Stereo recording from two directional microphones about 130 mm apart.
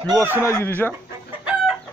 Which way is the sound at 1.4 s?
10° right (ahead or behind).